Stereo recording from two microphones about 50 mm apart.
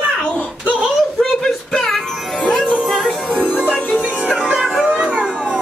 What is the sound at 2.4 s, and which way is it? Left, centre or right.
Music, centre.